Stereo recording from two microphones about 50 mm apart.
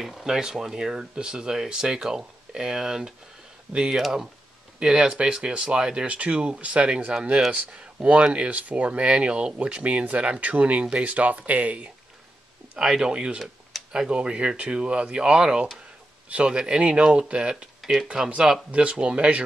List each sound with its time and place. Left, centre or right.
0.0 s speech: centre
4.7 s speech: centre
12.8 s speech: centre
18.7 s speech: right